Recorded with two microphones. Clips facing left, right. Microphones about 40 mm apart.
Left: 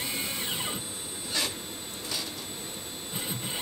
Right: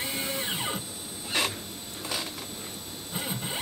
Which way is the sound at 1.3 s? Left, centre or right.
Right.